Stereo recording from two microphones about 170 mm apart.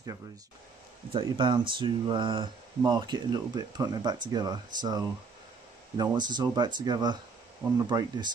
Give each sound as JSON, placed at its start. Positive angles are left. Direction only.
{"t": 1.1, "sound": "speech", "side_deg": -30}